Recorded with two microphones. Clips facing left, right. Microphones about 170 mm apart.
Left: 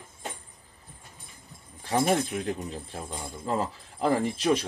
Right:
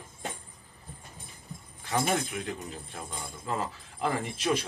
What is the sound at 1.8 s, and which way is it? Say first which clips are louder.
Speech: left 4 dB; 40° left (ahead or behind).